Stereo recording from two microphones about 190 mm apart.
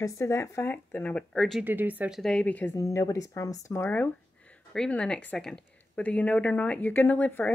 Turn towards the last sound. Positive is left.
turn(degrees=10)  # may be behind; listen again after turning